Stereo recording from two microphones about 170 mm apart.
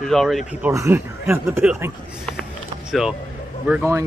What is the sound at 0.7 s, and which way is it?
Speech, 15° right (ahead or behind).